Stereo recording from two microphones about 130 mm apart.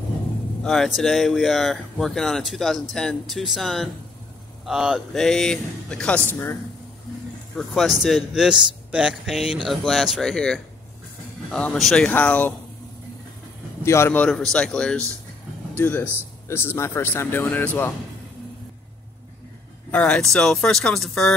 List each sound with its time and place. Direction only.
0.7 s speech: centre (ahead or behind)
7.5 s speech: centre (ahead or behind)
13.8 s speech: 20° left (ahead or behind)
19.9 s speech: 10° left (ahead or behind)